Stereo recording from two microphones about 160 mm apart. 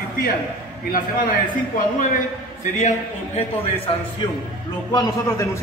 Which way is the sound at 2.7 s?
50° left (ahead or behind).